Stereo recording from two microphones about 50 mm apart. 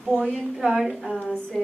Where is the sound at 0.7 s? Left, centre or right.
Centre.